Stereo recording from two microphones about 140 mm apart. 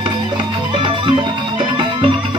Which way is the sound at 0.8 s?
35° right (ahead or behind).